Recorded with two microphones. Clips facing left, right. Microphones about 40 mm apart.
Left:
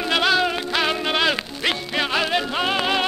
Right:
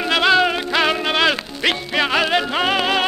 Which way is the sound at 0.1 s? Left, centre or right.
Centre.